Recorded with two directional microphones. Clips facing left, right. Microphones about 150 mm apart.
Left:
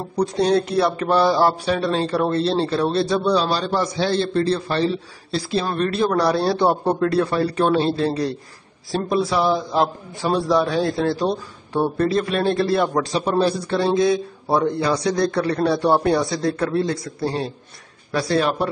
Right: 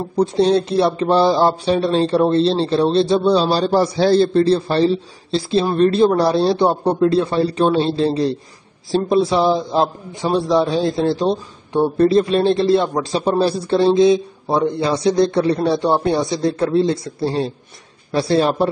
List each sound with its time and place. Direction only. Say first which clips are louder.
0.1 s speech: right 3 dB; 25° right (ahead or behind)